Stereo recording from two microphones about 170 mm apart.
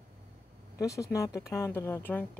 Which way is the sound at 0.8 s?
20° left (ahead or behind).